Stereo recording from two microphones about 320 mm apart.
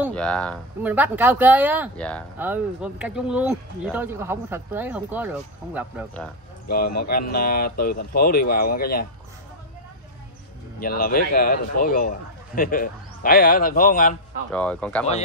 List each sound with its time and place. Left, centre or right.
0.0 s speech: centre
7.3 s speech: left
10.8 s speech: left
14.5 s speech: centre